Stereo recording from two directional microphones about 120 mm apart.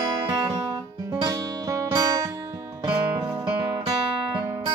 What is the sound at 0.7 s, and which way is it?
Music, 30° right (ahead or behind).